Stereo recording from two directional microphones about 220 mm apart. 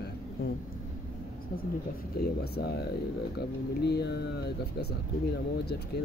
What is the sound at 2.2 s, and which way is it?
Speech, 50° left (ahead or behind).